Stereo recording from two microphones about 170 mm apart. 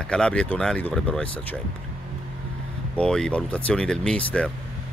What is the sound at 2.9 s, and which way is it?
Speech, 5° left (ahead or behind).